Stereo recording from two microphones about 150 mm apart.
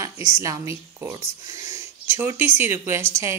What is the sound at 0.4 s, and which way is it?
Speech, 20° right (ahead or behind).